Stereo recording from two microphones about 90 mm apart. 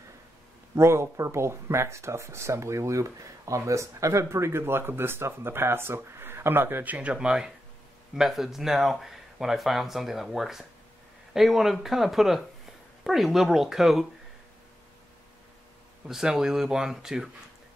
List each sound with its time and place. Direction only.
0.7 s speech: 30° right (ahead or behind); by 14.0 s 5° right (ahead or behind)
16.1 s speech: 5° right (ahead or behind)